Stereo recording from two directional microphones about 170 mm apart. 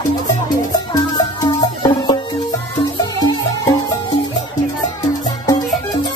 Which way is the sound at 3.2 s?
20° left (ahead or behind).